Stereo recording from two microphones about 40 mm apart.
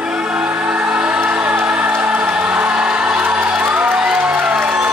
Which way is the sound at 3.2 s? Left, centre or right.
Right.